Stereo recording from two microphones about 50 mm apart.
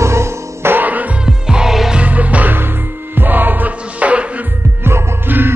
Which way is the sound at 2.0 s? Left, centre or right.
Right.